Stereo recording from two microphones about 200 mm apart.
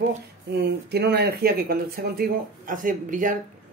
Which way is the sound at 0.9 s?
55° right (ahead or behind).